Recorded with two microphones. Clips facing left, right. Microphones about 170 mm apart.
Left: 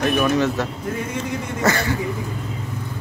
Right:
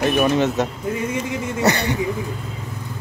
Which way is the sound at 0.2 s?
20° right (ahead or behind).